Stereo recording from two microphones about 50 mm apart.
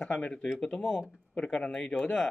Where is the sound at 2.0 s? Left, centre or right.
Centre.